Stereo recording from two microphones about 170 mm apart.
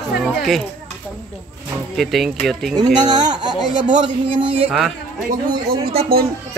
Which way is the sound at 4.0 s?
30° right (ahead or behind).